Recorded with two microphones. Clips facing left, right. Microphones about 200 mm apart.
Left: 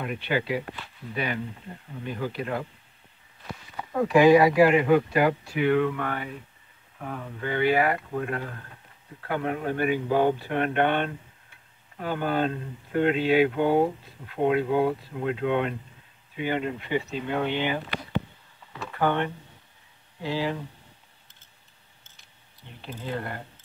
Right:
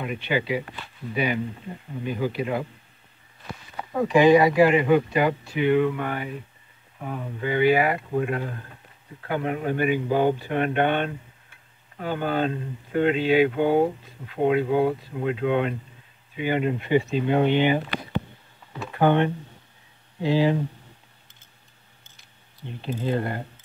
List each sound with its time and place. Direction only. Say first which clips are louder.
0.3 s speech: right 2 dB; 5° right (ahead or behind)
3.9 s speech: right 1 dB; centre (ahead or behind)
5.7 s speech: right 3 dB; 5° right (ahead or behind)
8.1 s speech: right 4 dB; 15° right (ahead or behind)
9.3 s speech: right 2 dB; 5° right (ahead or behind); by 20.6 s 20° right (ahead or behind)
22.8 s speech: right 7 dB; 25° right (ahead or behind)